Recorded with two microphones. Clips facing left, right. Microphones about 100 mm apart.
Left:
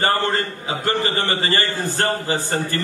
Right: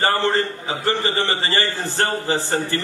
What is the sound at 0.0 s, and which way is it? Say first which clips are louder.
A man's voice: right 1 dB; 20° right (ahead or behind).